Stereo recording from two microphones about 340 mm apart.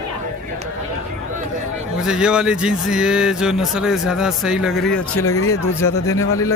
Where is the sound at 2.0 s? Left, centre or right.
Centre.